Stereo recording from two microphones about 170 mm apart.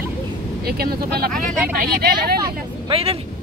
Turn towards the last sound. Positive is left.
turn(degrees=-35)  # may be behind; listen again after turning